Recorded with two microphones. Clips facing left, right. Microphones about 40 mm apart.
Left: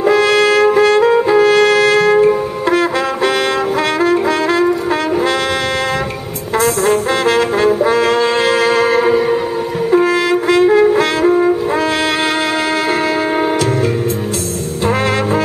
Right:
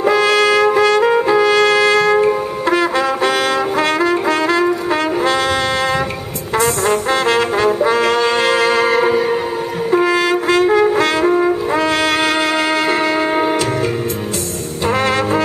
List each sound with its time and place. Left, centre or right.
0.3 s music: centre
1.3 s brass instrument: centre
1.7 s music: centre
2.0 s brass instrument: centre
4.5 s brass instrument: centre
6.6 s brass instrument: centre